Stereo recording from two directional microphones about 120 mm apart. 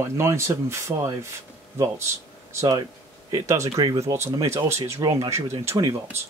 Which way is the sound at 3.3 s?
25° right (ahead or behind).